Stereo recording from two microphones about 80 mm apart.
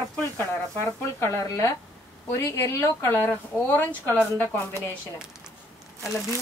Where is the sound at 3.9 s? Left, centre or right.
Centre.